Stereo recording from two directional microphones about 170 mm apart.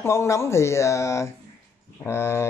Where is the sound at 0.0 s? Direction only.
15° left (ahead or behind).